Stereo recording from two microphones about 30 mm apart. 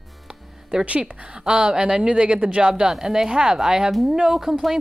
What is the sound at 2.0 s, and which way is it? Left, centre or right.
Speech, right.